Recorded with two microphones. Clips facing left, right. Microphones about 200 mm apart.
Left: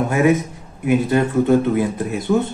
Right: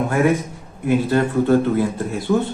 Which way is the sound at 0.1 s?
20° left (ahead or behind).